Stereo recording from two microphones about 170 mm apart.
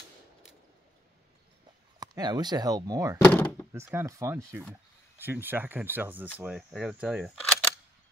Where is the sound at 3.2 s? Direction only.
10° left (ahead or behind).